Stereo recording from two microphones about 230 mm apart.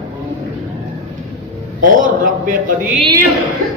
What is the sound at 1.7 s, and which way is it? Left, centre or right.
A woman's voice, right.